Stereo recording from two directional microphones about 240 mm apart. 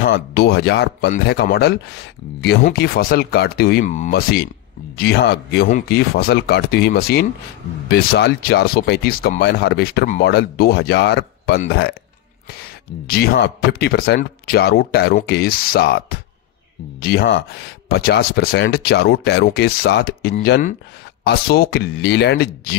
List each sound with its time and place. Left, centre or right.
0.0 s speech: left
13.0 s speech: left